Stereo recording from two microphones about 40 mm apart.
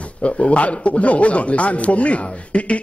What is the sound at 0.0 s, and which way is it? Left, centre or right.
A man's voice, left.